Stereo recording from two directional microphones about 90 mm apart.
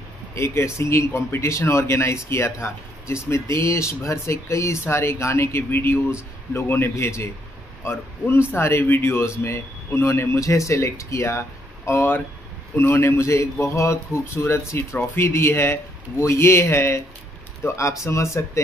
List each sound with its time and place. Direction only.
0.3 s a man's voice: 30° left (ahead or behind)